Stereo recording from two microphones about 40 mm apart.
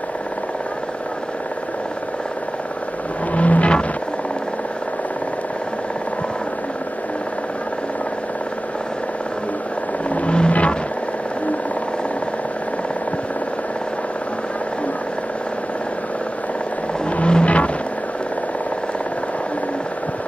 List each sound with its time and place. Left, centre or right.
3.3 s vehicle: left
10.0 s vehicle: left
10.5 s wild animals: left
17.0 s vehicle: left